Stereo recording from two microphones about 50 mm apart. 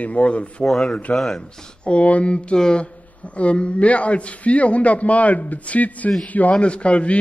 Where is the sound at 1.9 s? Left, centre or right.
Left.